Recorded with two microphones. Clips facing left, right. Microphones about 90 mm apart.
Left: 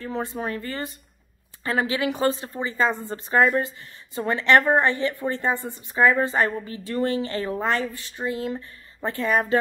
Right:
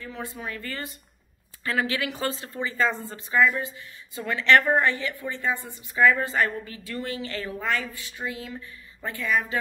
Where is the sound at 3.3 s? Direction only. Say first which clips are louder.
Left 3 dB; 45° left (ahead or behind).